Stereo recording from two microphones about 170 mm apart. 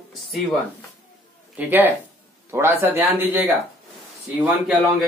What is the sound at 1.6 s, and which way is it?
Speech, 10° right (ahead or behind).